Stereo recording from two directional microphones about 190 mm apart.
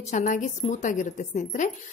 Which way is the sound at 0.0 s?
40° left (ahead or behind).